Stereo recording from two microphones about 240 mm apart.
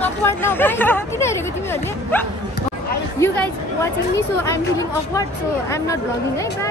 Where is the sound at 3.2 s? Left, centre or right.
Centre.